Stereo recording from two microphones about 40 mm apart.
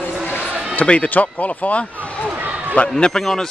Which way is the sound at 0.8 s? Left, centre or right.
Left.